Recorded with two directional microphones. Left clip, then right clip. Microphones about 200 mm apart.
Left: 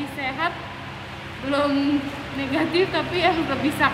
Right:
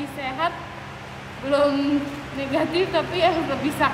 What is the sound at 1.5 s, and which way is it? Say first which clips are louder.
A woman's voice: right 2 dB; 20° right (ahead or behind).